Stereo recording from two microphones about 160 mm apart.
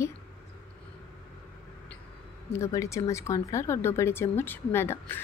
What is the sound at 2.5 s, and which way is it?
Speech, 20° left (ahead or behind).